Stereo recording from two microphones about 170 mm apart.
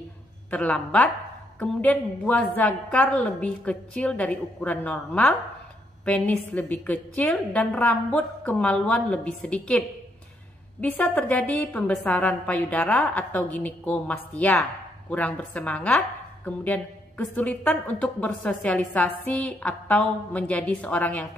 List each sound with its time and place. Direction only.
0.5 s a woman's voice: 5° left (ahead or behind)